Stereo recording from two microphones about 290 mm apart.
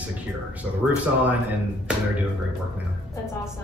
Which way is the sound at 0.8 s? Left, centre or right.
Centre.